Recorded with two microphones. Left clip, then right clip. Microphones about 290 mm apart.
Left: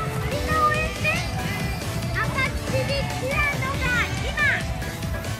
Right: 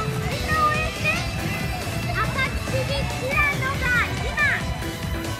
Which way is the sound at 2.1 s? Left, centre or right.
Left.